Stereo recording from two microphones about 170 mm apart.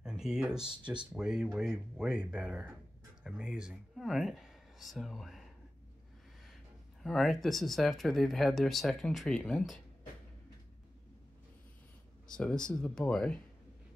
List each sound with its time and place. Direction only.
0.0 s speech: 5° right (ahead or behind)
6.4 s speech: centre (ahead or behind)
12.3 s speech: 5° left (ahead or behind)